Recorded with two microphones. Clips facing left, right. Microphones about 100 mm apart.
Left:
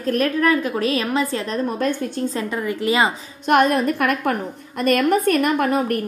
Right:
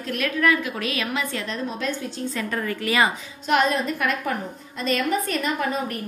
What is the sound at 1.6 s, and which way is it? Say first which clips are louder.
Speech: left 6 dB; 50° left (ahead or behind).